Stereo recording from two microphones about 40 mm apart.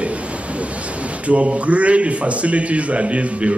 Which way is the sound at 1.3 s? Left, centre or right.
Right.